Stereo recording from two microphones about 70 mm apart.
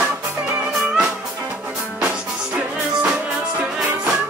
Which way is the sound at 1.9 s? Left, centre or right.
Centre.